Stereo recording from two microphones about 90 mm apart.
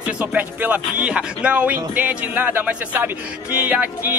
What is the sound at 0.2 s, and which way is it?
Speech, 15° right (ahead or behind).